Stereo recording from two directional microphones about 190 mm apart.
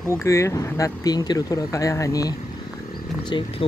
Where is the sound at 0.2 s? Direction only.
15° left (ahead or behind).